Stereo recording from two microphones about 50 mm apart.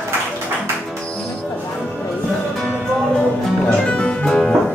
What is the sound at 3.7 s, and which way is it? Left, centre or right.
Music, left.